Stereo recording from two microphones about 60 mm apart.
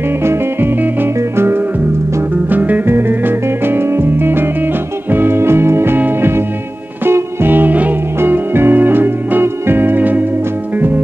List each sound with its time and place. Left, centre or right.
0.2 s music: right
2.5 s music: right